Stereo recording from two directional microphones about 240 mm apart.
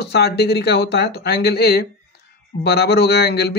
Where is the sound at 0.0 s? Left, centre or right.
Left.